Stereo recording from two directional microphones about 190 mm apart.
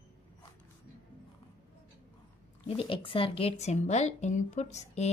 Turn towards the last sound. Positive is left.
turn(degrees=35)  # may be behind; listen again after turning